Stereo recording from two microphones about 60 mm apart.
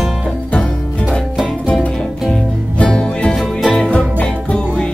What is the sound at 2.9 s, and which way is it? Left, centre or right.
Music, centre.